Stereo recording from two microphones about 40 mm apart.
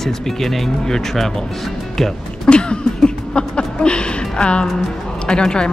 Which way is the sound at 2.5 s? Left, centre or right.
Left.